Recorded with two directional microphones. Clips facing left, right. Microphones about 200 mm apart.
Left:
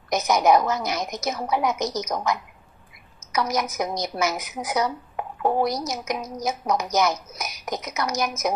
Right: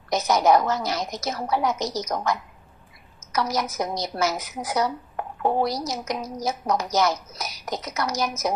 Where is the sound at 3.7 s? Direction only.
15° left (ahead or behind).